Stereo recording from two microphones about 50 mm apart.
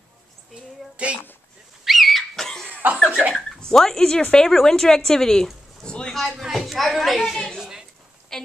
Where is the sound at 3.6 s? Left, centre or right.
Centre.